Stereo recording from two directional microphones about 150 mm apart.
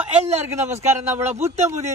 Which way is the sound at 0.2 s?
45° right (ahead or behind).